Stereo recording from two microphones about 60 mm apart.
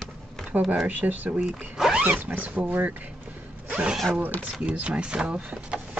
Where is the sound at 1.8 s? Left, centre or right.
Centre.